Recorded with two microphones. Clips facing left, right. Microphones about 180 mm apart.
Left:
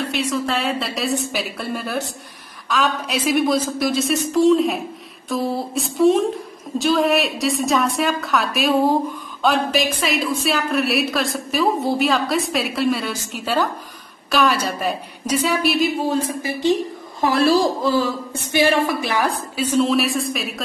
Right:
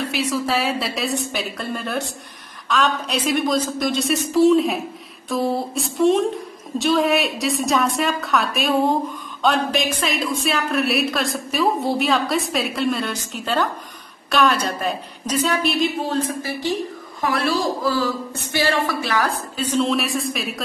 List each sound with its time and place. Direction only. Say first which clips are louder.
0.1 s a woman's voice: even; centre (ahead or behind); by 16.7 s 15° left (ahead or behind)
17.2 s a woman's voice: left 5 dB; 30° left (ahead or behind); by 20.6 s centre (ahead or behind)